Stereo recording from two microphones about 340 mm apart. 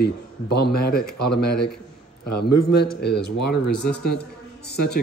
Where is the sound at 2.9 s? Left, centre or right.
Left.